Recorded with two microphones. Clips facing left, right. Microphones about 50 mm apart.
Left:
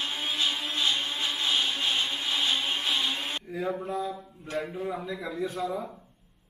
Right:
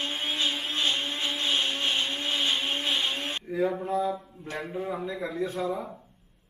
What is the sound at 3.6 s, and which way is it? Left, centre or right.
Mantra, centre.